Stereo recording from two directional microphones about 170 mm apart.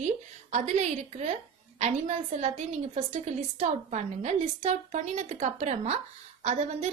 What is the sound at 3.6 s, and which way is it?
A woman's voice, 40° right (ahead or behind).